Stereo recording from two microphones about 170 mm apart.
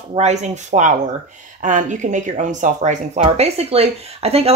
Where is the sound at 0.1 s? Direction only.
40° right (ahead or behind).